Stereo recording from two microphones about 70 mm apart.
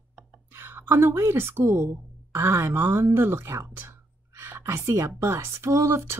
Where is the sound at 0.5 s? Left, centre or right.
Right.